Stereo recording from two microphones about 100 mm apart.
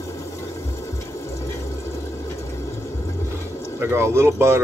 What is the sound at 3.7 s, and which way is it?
Speech, 25° right (ahead or behind).